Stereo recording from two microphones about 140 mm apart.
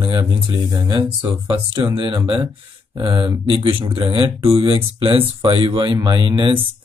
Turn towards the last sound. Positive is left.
turn(degrees=-35)  # may be behind; listen again after turning